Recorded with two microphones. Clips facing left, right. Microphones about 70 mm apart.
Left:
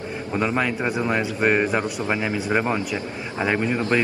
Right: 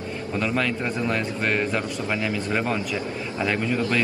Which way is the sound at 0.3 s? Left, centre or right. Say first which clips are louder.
Left 2 dB; left.